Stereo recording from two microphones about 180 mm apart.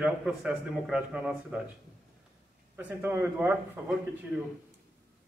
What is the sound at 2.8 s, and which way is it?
A man's voice, 10° right (ahead or behind).